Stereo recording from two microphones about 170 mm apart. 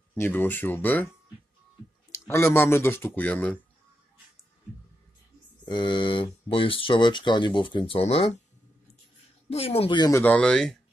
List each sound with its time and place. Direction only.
0.1 s speech: 10° left (ahead or behind)
2.1 s speech: 15° left (ahead or behind)
5.7 s speech: 25° left (ahead or behind)
9.5 s speech: 35° left (ahead or behind)
10.2 s speech: 5° left (ahead or behind)